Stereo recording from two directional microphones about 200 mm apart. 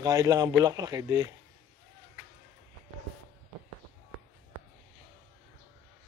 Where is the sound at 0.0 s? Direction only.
15° right (ahead or behind).